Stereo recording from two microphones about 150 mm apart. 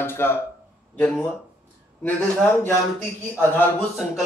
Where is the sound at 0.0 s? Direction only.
15° left (ahead or behind).